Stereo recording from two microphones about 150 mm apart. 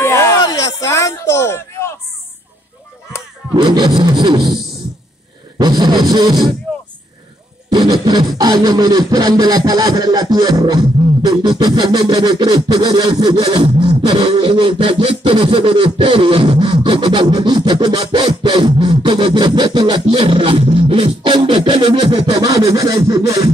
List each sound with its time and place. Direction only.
0.0 s a sound: 20° left (ahead or behind)
3.5 s music: 30° right (ahead or behind)
5.6 s music: 30° right (ahead or behind)
7.7 s music: 30° right (ahead or behind)
8.4 s a sound: 25° right (ahead or behind)
22.7 s music: 20° right (ahead or behind)